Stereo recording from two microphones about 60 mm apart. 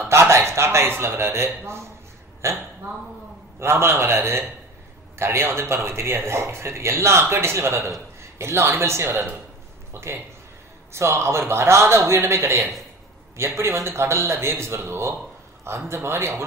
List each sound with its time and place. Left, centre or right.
0.1 s a sound: right
0.4 s speech: right
13.4 s speech: right